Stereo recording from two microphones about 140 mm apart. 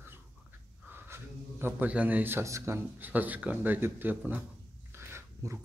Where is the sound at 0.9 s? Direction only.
15° right (ahead or behind).